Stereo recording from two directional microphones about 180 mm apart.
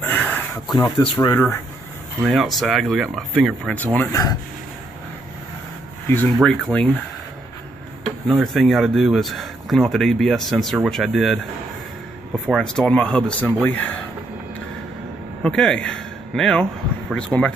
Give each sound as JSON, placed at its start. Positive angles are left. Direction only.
{"t": 0.0, "sound": "a sound", "side_deg": 10}
{"t": 0.9, "sound": "speech", "side_deg": 25}
{"t": 1.3, "sound": "speech", "side_deg": 15}
{"t": 2.2, "sound": "speech", "side_deg": 0}
{"t": 6.0, "sound": "speech", "side_deg": 10}
{"t": 8.3, "sound": "speech", "side_deg": 0}
{"t": 12.4, "sound": "speech", "side_deg": 5}
{"t": 15.4, "sound": "a man's voice", "side_deg": 5}